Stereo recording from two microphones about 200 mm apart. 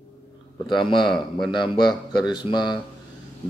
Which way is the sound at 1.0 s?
Centre (ahead or behind).